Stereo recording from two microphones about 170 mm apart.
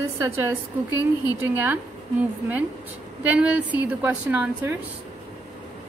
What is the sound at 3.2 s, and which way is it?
A woman's voice, 10° right (ahead or behind).